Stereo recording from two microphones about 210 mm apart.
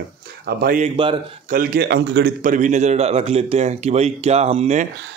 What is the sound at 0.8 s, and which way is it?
Speech, 25° right (ahead or behind).